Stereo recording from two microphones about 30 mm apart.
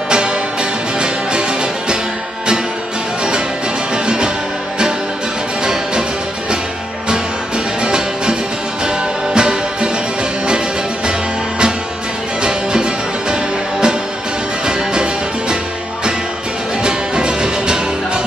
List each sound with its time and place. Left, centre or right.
0.1 s music: right
3.9 s music: right
7.8 s music: right
12.4 s music: right
16.8 s music: right